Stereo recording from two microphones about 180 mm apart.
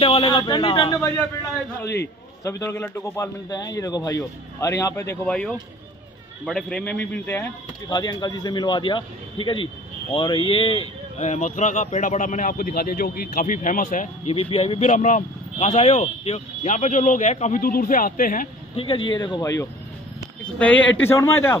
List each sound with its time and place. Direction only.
0.0 s speech: 25° left (ahead or behind)
2.4 s a man's voice: 15° left (ahead or behind)
7.9 s a man's voice: 25° left (ahead or behind); by 14.0 s 50° left (ahead or behind)
14.5 s speech: 35° left (ahead or behind)
18.8 s a man's voice: 30° left (ahead or behind)